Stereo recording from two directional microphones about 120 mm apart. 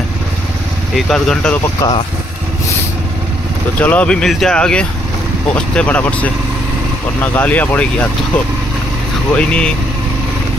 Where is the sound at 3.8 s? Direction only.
10° left (ahead or behind).